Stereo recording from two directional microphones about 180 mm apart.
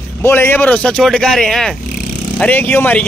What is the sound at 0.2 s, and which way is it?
Speech, 10° left (ahead or behind).